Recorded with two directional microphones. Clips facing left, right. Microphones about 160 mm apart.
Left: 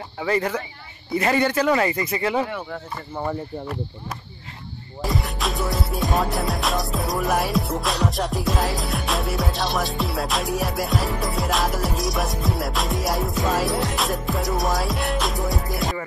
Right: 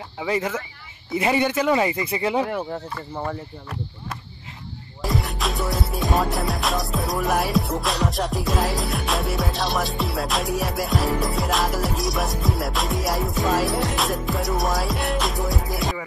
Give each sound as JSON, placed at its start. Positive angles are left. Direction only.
{"t": 0.2, "sound": "music", "side_deg": -5}
{"t": 1.1, "sound": "speech", "side_deg": -15}
{"t": 5.0, "sound": "music", "side_deg": 0}